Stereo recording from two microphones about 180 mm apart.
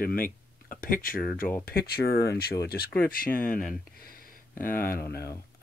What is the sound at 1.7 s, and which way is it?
Speech, 10° left (ahead or behind).